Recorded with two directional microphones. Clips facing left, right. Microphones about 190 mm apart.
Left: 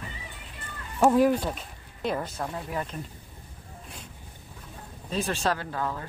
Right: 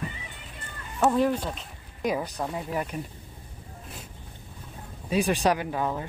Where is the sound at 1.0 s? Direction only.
5° left (ahead or behind).